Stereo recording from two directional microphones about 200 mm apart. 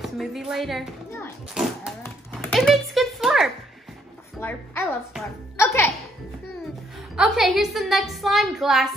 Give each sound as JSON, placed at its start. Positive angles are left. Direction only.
{"t": 0.0, "sound": "a woman's voice", "side_deg": 0}
{"t": 2.5, "sound": "a sound", "side_deg": 0}
{"t": 4.4, "sound": "music", "side_deg": 10}
{"t": 7.2, "sound": "a woman's voice", "side_deg": 0}